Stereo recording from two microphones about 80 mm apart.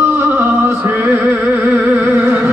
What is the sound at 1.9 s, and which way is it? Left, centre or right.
Music, right.